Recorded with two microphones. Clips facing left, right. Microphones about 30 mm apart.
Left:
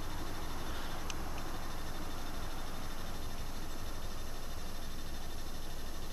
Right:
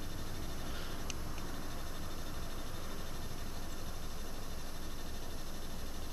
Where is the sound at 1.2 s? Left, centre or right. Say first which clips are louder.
Left 2 dB; centre.